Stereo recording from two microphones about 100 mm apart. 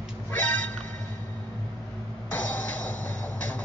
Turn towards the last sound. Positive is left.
turn(degrees=15)  # may be behind; listen again after turning